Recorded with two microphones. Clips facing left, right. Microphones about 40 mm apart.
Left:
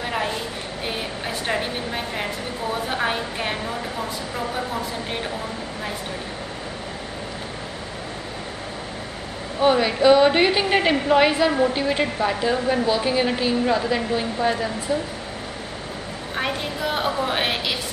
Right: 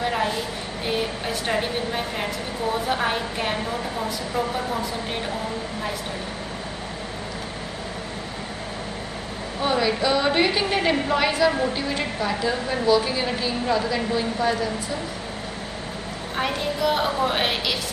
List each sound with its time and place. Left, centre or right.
0.0 s a sound: centre
2.9 s a woman's voice: centre
9.6 s a woman's voice: centre
16.3 s a woman's voice: centre